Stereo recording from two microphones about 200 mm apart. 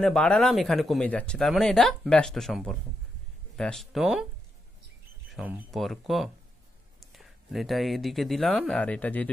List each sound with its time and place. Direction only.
0.0 s speech: 5° left (ahead or behind)
5.3 s speech: centre (ahead or behind)